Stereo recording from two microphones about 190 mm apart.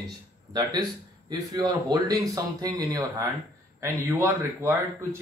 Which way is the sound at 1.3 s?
20° right (ahead or behind).